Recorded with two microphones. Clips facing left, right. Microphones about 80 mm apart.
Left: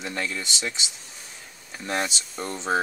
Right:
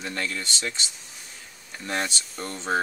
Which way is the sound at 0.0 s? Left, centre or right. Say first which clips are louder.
Left 1 dB; centre.